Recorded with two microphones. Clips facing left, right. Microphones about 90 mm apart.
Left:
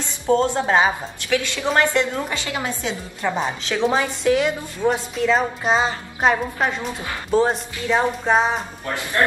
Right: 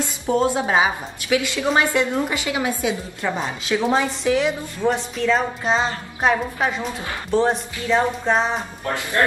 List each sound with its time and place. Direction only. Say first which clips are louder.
0.3 s a woman's voice: left 1 dB; 10° right (ahead or behind); by 8.6 s 5° left (ahead or behind)